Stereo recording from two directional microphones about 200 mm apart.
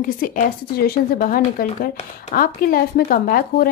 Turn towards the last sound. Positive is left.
turn(degrees=45)  # may be behind; listen again after turning